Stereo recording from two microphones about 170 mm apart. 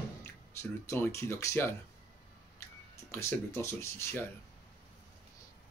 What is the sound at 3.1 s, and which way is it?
Speech, 15° left (ahead or behind).